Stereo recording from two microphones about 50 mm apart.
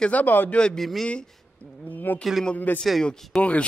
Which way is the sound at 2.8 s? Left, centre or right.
Centre.